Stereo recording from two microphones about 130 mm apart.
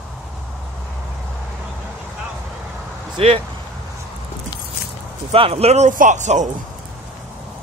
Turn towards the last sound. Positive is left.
turn(degrees=-65)  # may be behind; listen again after turning